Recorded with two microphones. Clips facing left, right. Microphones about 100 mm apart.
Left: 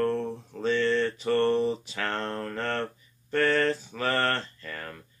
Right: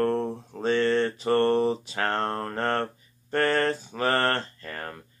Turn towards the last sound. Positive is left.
turn(degrees=-45)  # may be behind; listen again after turning